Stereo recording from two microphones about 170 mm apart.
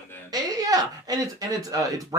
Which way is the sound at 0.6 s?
20° right (ahead or behind).